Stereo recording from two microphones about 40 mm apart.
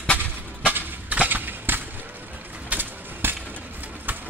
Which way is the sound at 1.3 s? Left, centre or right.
Right.